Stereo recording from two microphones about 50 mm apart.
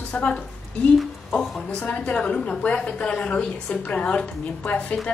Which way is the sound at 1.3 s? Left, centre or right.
Centre.